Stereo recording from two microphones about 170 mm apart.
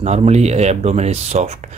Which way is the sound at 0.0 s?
40° right (ahead or behind).